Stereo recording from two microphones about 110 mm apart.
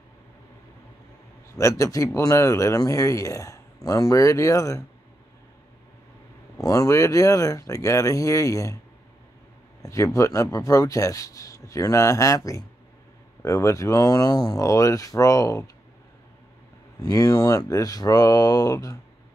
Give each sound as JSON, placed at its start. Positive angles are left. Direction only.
{"t": 1.6, "sound": "speech", "side_deg": 30}
{"t": 6.6, "sound": "speech", "side_deg": 30}
{"t": 9.8, "sound": "speech", "side_deg": 30}
{"t": 17.0, "sound": "speech", "side_deg": 35}